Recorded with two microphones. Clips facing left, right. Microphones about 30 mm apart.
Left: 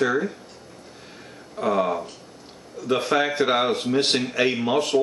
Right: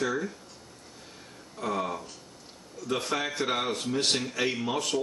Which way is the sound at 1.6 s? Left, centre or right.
Left.